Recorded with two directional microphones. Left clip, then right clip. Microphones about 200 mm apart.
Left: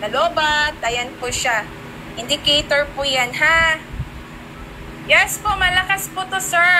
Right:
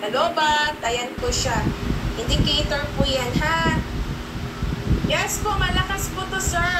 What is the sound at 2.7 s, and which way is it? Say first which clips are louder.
Speech: left 5 dB; 55° left (ahead or behind).